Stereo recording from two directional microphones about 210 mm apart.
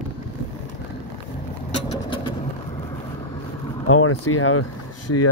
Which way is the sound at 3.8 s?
80° left.